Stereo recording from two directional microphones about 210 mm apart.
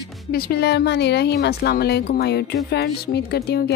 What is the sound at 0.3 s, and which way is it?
A woman's voice, 45° left (ahead or behind).